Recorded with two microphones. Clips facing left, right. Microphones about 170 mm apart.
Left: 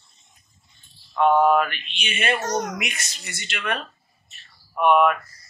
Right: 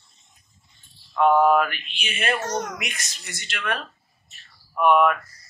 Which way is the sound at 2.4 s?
40° left (ahead or behind).